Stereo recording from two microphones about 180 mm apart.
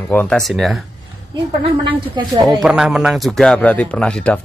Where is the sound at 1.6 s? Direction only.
25° right (ahead or behind).